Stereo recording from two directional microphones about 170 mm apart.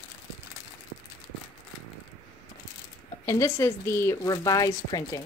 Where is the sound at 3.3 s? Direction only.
15° left (ahead or behind).